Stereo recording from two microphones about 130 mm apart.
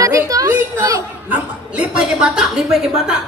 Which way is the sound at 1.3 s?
10° right (ahead or behind).